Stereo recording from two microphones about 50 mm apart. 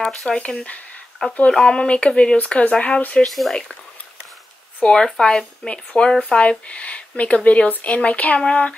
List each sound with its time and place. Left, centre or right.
0.0 s speech: centre; by 3.3 s left
3.3 s speech: centre
4.8 s speech: centre
6.7 s speech: left